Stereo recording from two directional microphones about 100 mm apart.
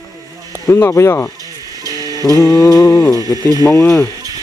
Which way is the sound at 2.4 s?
35° left (ahead or behind).